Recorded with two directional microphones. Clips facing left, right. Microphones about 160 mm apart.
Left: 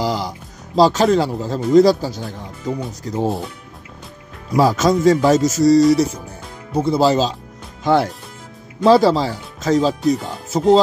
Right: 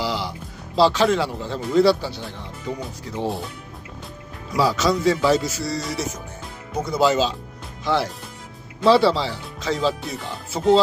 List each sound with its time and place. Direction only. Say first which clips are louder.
0.0 s speech: left 4 dB; 45° left (ahead or behind)
4.6 s speech: left 5 dB; 45° left (ahead or behind)
7.8 s speech: left 6 dB; 50° left (ahead or behind)